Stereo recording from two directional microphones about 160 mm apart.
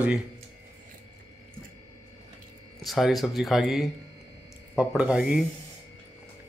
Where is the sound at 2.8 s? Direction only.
Centre (ahead or behind).